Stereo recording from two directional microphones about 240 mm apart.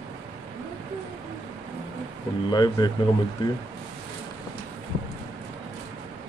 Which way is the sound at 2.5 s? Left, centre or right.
Centre.